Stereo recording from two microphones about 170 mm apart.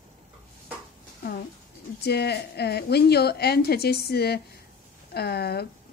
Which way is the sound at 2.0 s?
75° left (ahead or behind).